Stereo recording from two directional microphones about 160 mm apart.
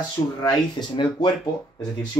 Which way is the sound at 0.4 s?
25° left (ahead or behind).